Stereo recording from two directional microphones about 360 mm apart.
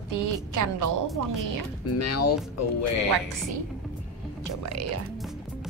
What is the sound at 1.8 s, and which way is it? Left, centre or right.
Speech, left.